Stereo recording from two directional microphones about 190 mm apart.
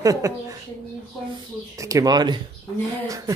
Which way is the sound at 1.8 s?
15° right (ahead or behind).